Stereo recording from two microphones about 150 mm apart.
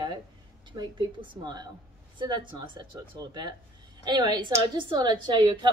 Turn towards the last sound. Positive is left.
turn(degrees=-30)  # may be behind; listen again after turning